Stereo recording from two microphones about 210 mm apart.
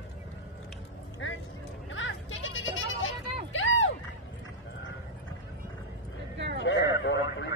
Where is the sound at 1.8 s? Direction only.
65° left (ahead or behind).